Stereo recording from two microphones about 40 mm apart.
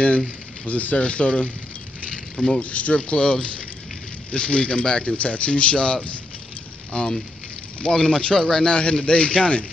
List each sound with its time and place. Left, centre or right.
0.7 s speech: left
2.3 s speech: centre
2.6 s speech: left; by 8.6 s centre
8.6 s speech: left